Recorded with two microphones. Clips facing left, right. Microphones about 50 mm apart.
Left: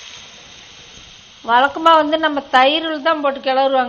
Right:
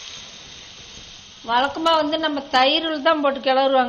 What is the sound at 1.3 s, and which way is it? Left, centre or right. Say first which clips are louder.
Speech: left 6 dB; left.